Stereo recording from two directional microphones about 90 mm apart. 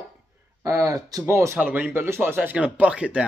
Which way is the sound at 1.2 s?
30° right (ahead or behind).